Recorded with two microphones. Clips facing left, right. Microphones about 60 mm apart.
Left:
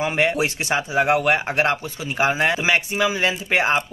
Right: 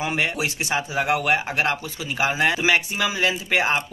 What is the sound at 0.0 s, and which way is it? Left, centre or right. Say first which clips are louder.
A man's voice: left 4 dB; left.